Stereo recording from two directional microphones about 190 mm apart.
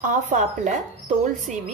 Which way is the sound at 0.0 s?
40° right (ahead or behind).